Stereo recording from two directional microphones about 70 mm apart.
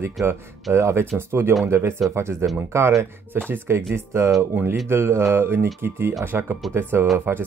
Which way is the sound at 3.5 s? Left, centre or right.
Right.